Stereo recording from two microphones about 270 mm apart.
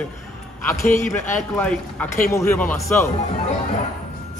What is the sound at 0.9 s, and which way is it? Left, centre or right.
Speech, left.